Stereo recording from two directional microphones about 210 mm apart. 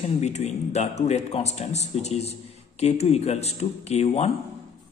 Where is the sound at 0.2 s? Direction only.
30° left (ahead or behind).